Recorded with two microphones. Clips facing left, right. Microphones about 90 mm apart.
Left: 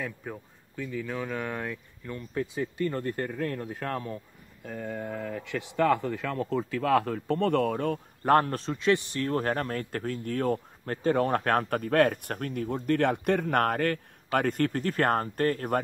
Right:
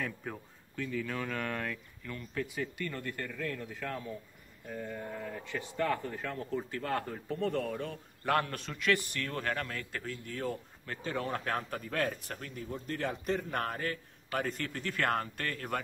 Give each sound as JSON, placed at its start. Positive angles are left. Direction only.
{"t": 0.0, "sound": "speech", "side_deg": 5}
{"t": 2.9, "sound": "a man's voice", "side_deg": 35}
{"t": 4.6, "sound": "speech", "side_deg": 70}